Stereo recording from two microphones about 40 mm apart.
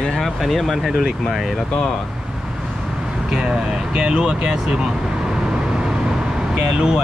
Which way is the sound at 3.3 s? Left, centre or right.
Centre.